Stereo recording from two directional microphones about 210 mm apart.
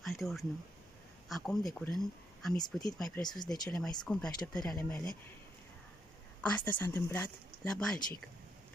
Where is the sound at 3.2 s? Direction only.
20° left (ahead or behind).